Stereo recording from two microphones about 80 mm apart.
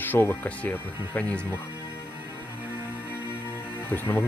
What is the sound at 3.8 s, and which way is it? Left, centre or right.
Speech, left.